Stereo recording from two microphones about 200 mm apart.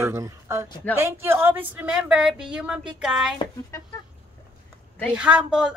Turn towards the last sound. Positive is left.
turn(degrees=-5)  # may be behind; listen again after turning